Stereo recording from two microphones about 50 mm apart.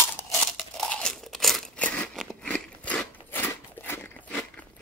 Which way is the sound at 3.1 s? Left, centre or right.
Left.